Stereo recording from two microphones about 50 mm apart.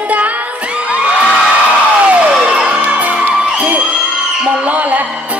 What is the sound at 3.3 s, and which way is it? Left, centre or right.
Music, centre.